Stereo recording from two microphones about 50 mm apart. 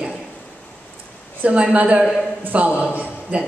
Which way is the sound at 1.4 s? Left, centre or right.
Right.